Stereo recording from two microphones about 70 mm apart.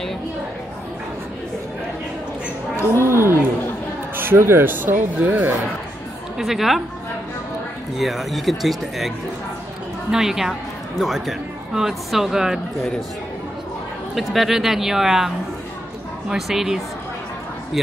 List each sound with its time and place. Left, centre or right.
2.8 s a woman's voice: left
3.1 s a sound: right
4.2 s speech: right
6.3 s speech: centre
8.0 s speech: centre
10.1 s speech: centre
14.1 s speech: centre
16.3 s speech: centre